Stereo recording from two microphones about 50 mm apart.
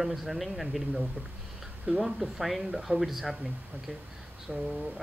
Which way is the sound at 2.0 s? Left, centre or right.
Centre.